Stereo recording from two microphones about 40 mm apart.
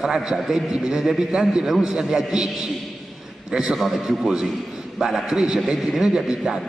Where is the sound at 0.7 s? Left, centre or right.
Centre.